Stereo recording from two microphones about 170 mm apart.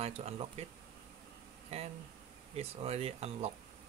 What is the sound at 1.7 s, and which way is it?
Speech, 35° right (ahead or behind).